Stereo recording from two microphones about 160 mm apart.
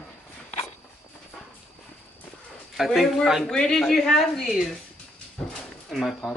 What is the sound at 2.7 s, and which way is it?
Speech, centre (ahead or behind).